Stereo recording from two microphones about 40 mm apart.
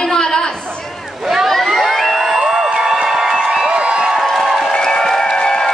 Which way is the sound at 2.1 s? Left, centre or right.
Centre.